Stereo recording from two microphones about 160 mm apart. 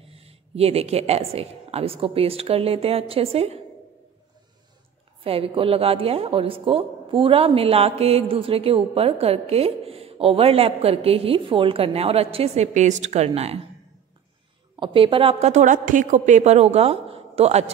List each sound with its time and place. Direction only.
0.0 s a woman's voice: 40° right (ahead or behind)
5.2 s a woman's voice: 35° right (ahead or behind)
14.8 s a woman's voice: 30° right (ahead or behind)
15.4 s a woman's voice: 50° right (ahead or behind)